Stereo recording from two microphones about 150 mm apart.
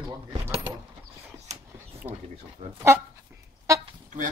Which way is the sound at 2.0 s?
40° right (ahead or behind).